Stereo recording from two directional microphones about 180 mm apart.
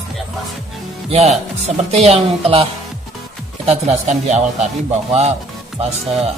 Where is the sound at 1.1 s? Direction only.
35° right (ahead or behind).